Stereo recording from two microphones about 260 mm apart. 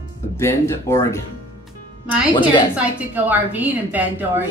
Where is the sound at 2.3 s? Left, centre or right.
Centre.